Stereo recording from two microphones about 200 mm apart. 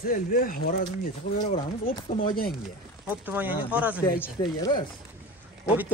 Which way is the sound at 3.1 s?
10° right (ahead or behind).